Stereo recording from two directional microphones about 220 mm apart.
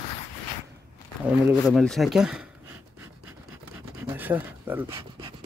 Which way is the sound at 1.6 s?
Centre (ahead or behind).